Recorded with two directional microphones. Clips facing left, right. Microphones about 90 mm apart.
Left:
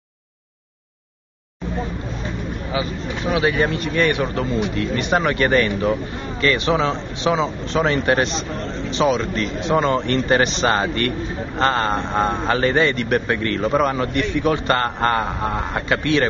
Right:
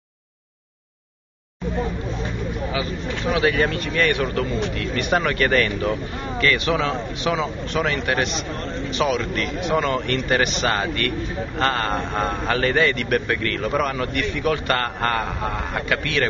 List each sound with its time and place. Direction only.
2.7 s a man's voice: 25° left (ahead or behind)